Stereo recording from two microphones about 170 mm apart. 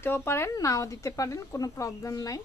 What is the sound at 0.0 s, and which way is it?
Speech, 15° left (ahead or behind).